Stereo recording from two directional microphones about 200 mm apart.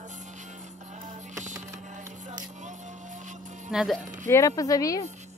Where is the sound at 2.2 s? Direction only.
35° right (ahead or behind).